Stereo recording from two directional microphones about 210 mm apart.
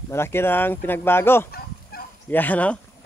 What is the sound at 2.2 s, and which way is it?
Speech, 10° left (ahead or behind).